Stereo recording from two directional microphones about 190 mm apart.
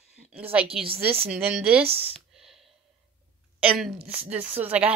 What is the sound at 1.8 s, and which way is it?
Speech, 30° right (ahead or behind).